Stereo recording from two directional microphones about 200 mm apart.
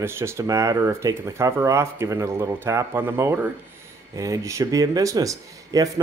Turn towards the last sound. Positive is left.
turn(degrees=-15)  # may be behind; listen again after turning